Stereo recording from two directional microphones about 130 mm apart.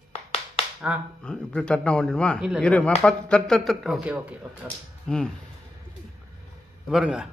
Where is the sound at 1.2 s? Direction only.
5° left (ahead or behind).